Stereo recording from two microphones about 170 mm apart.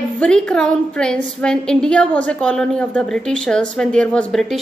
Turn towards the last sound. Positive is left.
turn(degrees=5)  # may be behind; listen again after turning